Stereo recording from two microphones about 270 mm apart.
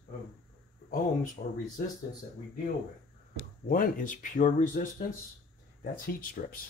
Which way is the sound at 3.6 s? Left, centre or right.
Left.